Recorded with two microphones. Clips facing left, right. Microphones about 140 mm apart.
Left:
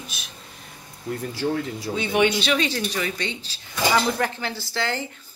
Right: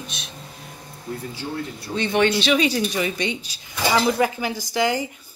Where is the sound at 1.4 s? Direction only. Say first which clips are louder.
Left 7 dB; 75° left (ahead or behind).